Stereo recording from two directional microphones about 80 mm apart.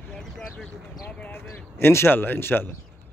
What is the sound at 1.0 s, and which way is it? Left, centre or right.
Clip-clop, left.